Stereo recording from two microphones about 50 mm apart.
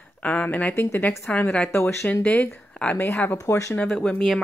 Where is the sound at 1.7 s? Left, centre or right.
Left.